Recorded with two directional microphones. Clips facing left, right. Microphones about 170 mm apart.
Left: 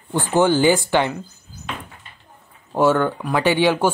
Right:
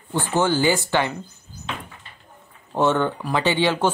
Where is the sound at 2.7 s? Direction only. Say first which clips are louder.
Left 3 dB; 10° left (ahead or behind).